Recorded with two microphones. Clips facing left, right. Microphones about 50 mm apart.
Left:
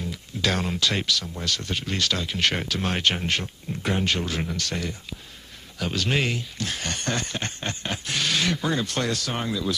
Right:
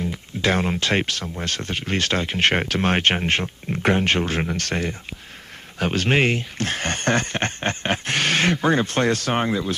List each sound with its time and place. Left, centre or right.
0.0 s speech: right
3.7 s speech: right